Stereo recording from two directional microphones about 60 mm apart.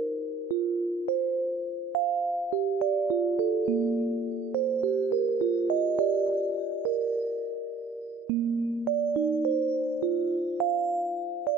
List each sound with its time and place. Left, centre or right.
3.7 s music: right
5.6 s music: right
10.6 s music: centre